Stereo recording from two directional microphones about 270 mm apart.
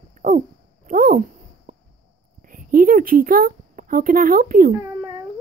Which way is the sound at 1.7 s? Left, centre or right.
Right.